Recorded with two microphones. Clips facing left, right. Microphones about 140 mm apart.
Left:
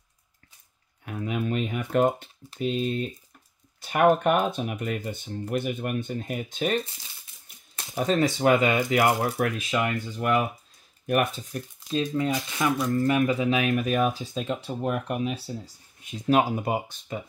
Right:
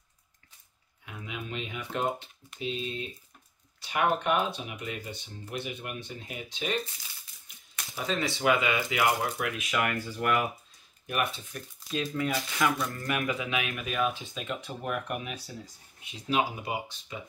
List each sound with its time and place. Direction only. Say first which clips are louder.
1.0 s typing: left 10 dB; 45° left (ahead or behind)
1.4 s a sound: left 8 dB; 50° left (ahead or behind)
2.6 s speech: left 8 dB; 45° left (ahead or behind)
7.9 s speech: left 8 dB; 50° left (ahead or behind)
9.7 s speech: left 3 dB; 25° left (ahead or behind)
11.1 s speech: left 7 dB; 45° left (ahead or behind)
12.1 s speech: left 4 dB; 20° left (ahead or behind)
16.0 s speech: left 7 dB; 50° left (ahead or behind)